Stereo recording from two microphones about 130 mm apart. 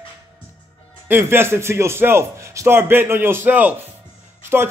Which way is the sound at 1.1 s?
15° right (ahead or behind).